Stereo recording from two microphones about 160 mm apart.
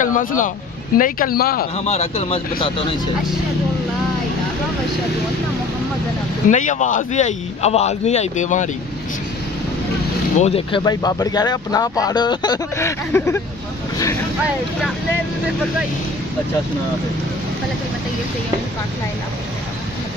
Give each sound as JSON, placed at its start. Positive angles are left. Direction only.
{"t": 0.0, "sound": "speech", "side_deg": 55}
{"t": 1.9, "sound": "a man's voice", "side_deg": 40}
{"t": 6.5, "sound": "speech", "side_deg": 50}
{"t": 10.4, "sound": "a man's voice", "side_deg": 35}
{"t": 10.8, "sound": "speech", "side_deg": 25}